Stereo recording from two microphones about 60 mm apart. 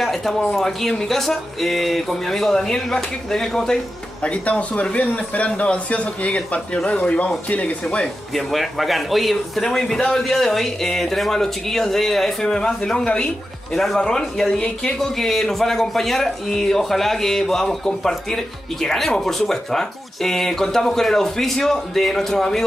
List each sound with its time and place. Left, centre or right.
0.0 s a sound: centre
0.5 s a man's voice: centre; by 8.1 s left
8.4 s a man's voice: centre